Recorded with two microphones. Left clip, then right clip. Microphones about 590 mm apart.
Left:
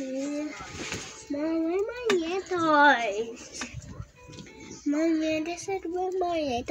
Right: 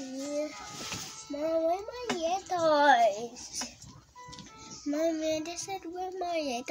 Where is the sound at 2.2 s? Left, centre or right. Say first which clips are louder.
Even; right.